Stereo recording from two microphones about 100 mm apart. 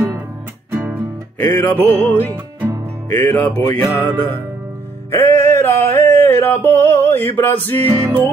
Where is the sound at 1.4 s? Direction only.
15° left (ahead or behind).